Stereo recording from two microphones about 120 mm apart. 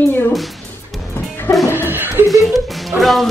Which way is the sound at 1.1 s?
20° left (ahead or behind).